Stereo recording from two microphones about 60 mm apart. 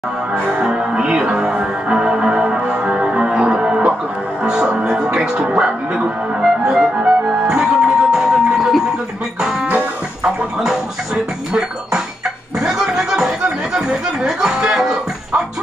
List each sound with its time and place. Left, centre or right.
0.5 s music: centre
5.5 s speech: centre
6.4 s music: centre
12.5 s a sound: centre
13.7 s speech: centre